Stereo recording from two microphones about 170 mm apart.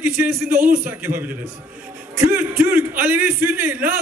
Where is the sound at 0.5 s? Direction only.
55° right (ahead or behind).